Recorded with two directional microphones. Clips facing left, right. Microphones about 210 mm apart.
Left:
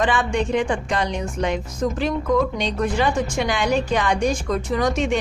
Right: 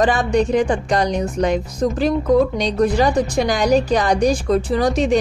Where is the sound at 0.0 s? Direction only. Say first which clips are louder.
Right 5 dB; 40° right (ahead or behind).